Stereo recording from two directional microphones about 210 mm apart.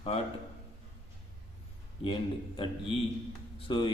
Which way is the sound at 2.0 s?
25° left (ahead or behind).